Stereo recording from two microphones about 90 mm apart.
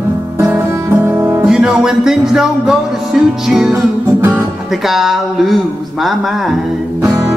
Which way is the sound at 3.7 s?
30° right (ahead or behind).